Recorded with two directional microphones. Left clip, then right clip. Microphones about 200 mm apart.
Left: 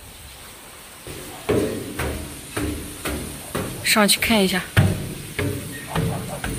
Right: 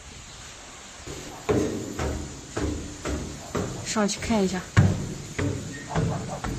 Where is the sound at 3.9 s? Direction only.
10° left (ahead or behind).